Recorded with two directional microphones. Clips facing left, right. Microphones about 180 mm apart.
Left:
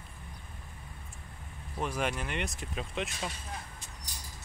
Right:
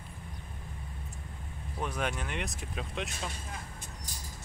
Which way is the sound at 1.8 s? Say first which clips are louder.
Left 1 dB; centre (ahead or behind).